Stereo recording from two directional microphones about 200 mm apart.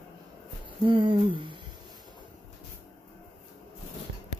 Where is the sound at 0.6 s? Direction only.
25° right (ahead or behind).